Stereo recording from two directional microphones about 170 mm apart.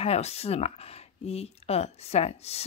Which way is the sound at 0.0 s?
35° left (ahead or behind).